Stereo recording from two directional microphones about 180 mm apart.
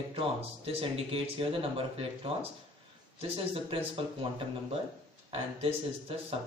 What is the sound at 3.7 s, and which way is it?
Speech, 30° right (ahead or behind).